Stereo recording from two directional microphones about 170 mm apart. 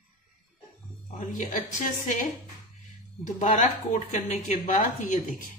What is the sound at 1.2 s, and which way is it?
Speech, 50° left (ahead or behind).